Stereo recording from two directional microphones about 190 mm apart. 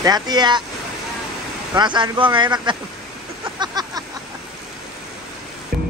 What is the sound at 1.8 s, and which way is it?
Speech, 25° right (ahead or behind).